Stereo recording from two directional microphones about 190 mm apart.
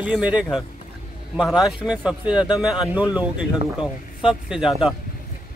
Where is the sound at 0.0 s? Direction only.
5° right (ahead or behind).